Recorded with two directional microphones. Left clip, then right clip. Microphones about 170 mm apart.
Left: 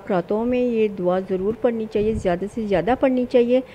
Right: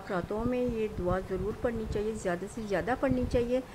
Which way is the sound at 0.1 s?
30° left (ahead or behind).